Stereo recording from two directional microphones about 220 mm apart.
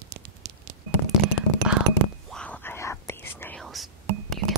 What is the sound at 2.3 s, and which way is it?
Whispering, 5° left (ahead or behind).